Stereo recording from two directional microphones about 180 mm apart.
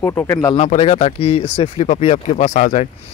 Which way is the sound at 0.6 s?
35° left (ahead or behind).